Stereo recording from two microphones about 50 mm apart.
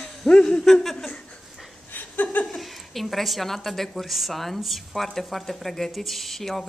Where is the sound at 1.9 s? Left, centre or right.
Left.